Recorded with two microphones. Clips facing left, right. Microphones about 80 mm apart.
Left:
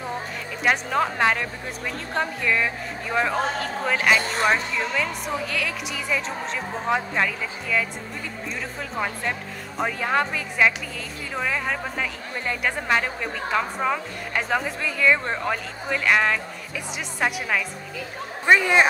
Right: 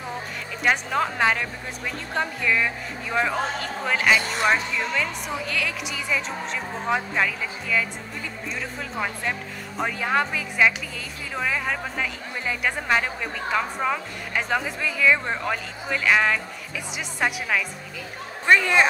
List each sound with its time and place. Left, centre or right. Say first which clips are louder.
0.7 s speech: left 1 dB; centre
8.9 s speech: left 1 dB; centre
18.4 s speech: left 1 dB; centre